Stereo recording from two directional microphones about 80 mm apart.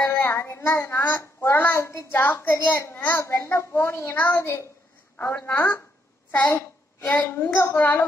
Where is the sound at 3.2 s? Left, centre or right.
Left.